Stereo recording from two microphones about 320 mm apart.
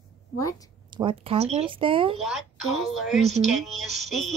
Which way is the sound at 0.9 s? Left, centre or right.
Centre.